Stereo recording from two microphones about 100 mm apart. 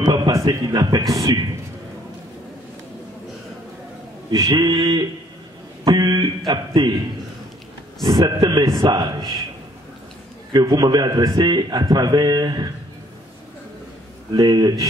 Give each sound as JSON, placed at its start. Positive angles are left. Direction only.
{"t": 0.0, "sound": "speech", "side_deg": -40}
{"t": 4.3, "sound": "a sound", "side_deg": -35}
{"t": 5.9, "sound": "a man's voice", "side_deg": -40}
{"t": 8.0, "sound": "a man's voice", "side_deg": -50}
{"t": 10.5, "sound": "a man's voice", "side_deg": -45}
{"t": 14.3, "sound": "a sound", "side_deg": -40}